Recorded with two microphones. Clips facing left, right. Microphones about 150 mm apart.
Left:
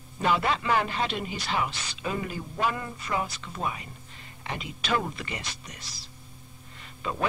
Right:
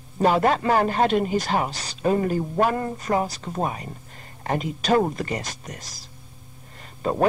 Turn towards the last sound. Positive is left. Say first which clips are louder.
# right 8 dB
turn(degrees=-40)  # may be behind; listen again after turning